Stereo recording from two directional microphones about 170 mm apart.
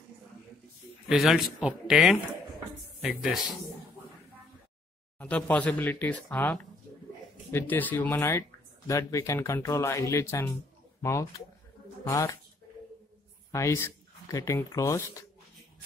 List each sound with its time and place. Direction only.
1.0 s speech: centre (ahead or behind)
5.2 s speech: 10° left (ahead or behind)
13.5 s speech: 15° left (ahead or behind)